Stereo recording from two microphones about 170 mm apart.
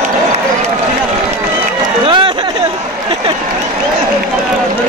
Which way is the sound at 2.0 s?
30° right (ahead or behind).